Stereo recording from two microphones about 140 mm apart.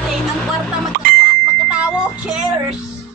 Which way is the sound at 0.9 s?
90° right.